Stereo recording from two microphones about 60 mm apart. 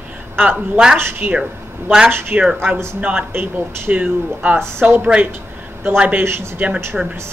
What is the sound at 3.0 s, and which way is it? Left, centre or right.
Speech, right.